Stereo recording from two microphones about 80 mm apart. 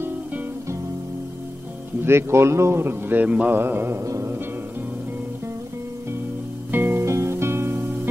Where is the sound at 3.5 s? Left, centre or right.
Right.